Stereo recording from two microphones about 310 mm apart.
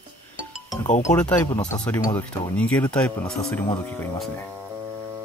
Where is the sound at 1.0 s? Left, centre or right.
Centre.